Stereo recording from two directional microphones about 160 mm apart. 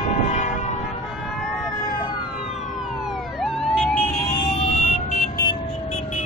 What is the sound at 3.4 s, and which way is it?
Emergency vehicle, 5° left (ahead or behind).